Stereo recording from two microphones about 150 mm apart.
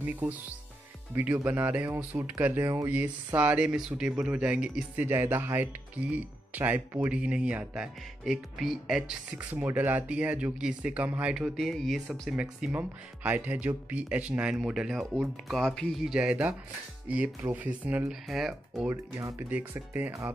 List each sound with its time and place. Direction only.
0.0 s speech: 10° right (ahead or behind)
18.9 s speech: 20° right (ahead or behind)